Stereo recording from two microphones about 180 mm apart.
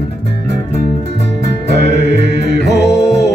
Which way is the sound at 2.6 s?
70° left (ahead or behind).